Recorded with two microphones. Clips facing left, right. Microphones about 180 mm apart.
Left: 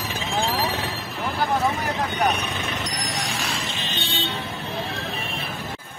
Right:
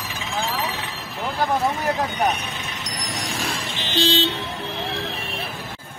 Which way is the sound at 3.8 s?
80° right.